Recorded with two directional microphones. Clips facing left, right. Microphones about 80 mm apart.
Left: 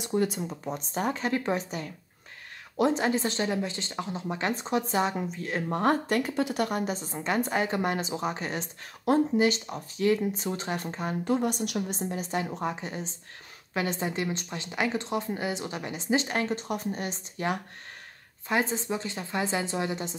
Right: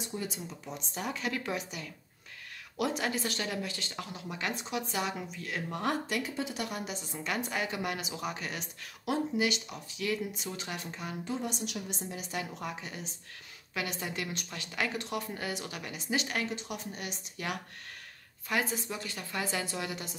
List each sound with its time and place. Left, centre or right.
0.0 s a woman's voice: left
11.2 s speech: left
11.9 s a woman's voice: left